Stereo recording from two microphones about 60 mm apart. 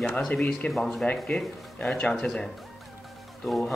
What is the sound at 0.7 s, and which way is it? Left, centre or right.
A man's voice, centre.